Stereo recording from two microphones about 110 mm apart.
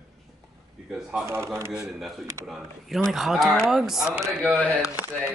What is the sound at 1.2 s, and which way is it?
Speech, 25° right (ahead or behind).